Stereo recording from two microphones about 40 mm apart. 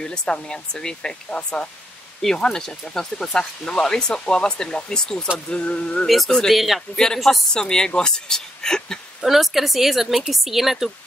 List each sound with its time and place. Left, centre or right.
0.0 s speech: centre
5.5 s speech: left
6.0 s a woman's voice: centre
7.5 s speech: centre
9.2 s a woman's voice: centre